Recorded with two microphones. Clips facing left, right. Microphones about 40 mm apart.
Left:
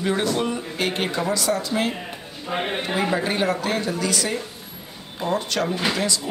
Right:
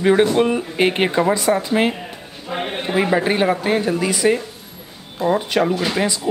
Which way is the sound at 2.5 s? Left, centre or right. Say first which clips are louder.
Right 1 dB; centre.